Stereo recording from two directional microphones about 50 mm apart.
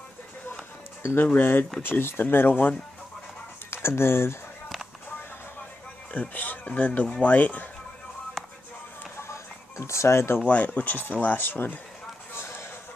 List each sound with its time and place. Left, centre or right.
1.0 s speech: left
3.7 s speech: left
6.1 s speech: left
9.3 s music: left
10.4 s speech: left
12.4 s a sound: left